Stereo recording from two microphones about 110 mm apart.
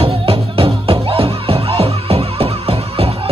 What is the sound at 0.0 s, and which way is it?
Music, 55° right (ahead or behind).